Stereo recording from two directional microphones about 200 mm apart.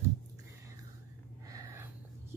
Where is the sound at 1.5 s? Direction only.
15° right (ahead or behind).